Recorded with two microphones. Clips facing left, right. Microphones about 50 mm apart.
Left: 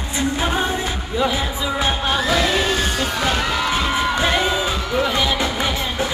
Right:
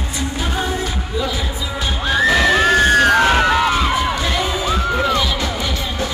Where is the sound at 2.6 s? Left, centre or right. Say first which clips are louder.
Right 8 dB; right.